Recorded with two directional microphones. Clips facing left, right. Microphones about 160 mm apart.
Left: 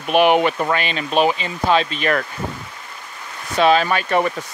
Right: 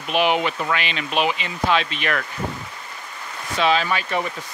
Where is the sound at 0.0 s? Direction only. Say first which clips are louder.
Left 5 dB; 55° left (ahead or behind).